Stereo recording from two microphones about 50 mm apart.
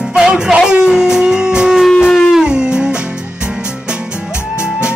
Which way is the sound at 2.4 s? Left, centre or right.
Centre.